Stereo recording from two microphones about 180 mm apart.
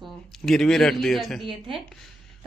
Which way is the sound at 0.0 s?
Centre (ahead or behind).